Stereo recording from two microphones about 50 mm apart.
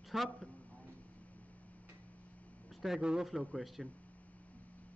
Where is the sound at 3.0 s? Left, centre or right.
Centre.